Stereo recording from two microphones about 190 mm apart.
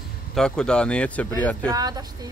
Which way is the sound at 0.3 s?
5° left (ahead or behind).